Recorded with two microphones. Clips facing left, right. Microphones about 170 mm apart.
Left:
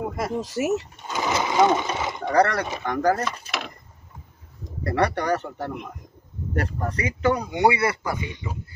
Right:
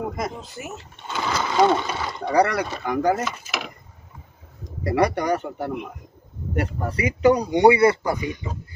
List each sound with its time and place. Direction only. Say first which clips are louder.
0.4 s speech: left 12 dB; 75° left (ahead or behind)
1.1 s speech: left 1 dB; 15° left (ahead or behind)
2.3 s speech: right 1 dB; 5° right (ahead or behind)
4.8 s speech: right 2 dB; 10° right (ahead or behind)